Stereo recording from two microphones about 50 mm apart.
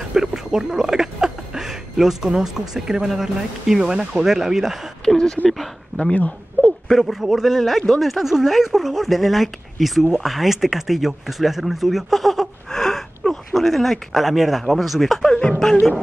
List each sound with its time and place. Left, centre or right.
0.1 s speech: centre
5.0 s speech: centre
5.5 s speech: centre
6.1 s a sound: left
6.9 s a man's voice: centre